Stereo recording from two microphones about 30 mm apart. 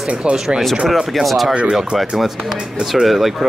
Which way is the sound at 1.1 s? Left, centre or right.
Centre.